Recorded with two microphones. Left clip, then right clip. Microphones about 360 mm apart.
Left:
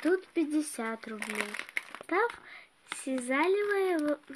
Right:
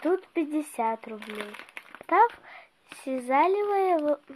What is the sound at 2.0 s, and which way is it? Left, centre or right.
Speech, centre.